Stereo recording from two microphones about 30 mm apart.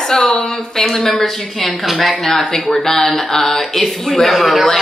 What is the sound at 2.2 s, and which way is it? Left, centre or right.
A woman's voice, centre.